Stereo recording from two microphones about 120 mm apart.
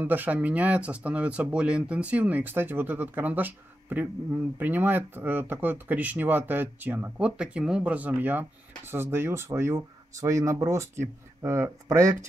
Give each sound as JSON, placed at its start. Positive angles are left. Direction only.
{"t": 0.0, "sound": "speech", "side_deg": -15}